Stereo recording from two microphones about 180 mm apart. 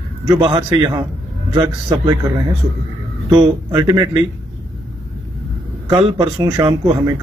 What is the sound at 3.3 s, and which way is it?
Speech, 25° right (ahead or behind).